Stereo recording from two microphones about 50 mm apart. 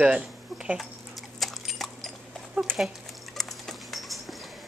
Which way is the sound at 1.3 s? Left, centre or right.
Centre.